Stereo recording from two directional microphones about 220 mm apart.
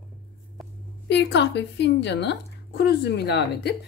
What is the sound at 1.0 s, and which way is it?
Speech, 50° left (ahead or behind).